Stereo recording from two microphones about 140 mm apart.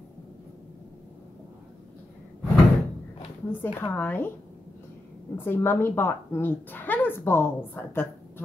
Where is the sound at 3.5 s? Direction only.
15° left (ahead or behind).